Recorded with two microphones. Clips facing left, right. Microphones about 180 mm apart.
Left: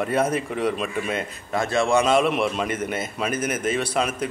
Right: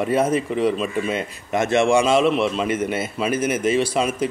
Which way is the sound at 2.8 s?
5° right (ahead or behind).